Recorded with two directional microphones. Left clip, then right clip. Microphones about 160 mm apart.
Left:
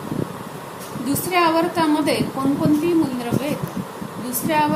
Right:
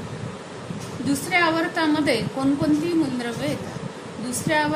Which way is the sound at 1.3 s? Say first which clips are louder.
Left 3 dB; 45° right (ahead or behind).